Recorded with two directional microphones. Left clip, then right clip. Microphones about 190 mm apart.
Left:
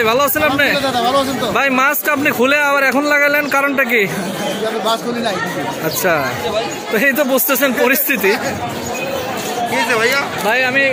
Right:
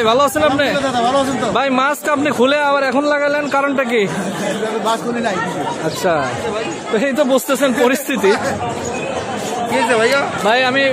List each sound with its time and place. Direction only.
0.0 s speech: 5° right (ahead or behind)
7.0 s speech: 5° right (ahead or behind)
9.8 s speech: 45° right (ahead or behind)
10.5 s speech: 20° right (ahead or behind)